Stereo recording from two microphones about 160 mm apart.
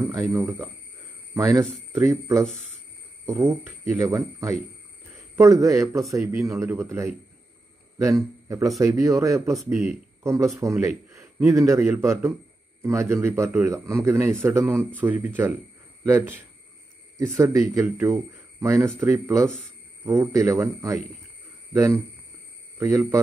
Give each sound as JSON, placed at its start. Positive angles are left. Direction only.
{"t": 0.0, "sound": "a man's voice", "side_deg": -20}
{"t": 22.8, "sound": "speech", "side_deg": -20}